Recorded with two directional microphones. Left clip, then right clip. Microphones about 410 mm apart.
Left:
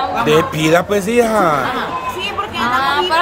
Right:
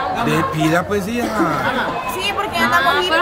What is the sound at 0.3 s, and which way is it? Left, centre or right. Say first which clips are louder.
Speech: left 6 dB; centre.